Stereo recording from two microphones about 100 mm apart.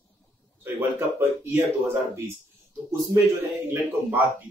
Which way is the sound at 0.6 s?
25° right (ahead or behind).